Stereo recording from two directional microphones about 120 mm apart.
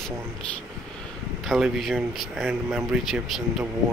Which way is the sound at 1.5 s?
Centre (ahead or behind).